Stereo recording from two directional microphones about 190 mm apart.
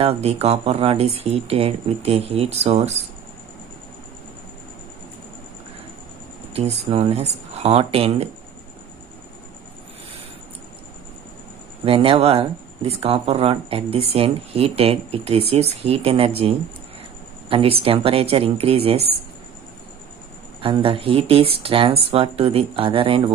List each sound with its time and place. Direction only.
0.0 s speech: 35° right (ahead or behind)
6.5 s speech: 35° right (ahead or behind)
11.8 s speech: 30° right (ahead or behind)
20.6 s speech: 30° right (ahead or behind)